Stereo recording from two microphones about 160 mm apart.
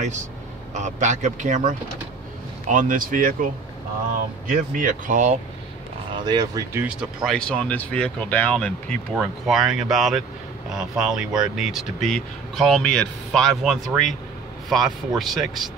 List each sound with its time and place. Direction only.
0.7 s speech: 50° right (ahead or behind)
4.5 s speech: 55° right (ahead or behind)
6.1 s speech: 25° right (ahead or behind)
7.2 s speech: 5° left (ahead or behind)